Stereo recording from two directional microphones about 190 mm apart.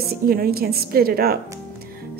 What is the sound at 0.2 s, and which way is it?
A woman's voice, 50° right (ahead or behind).